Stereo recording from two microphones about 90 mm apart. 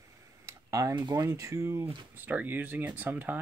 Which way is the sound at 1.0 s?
50° right (ahead or behind).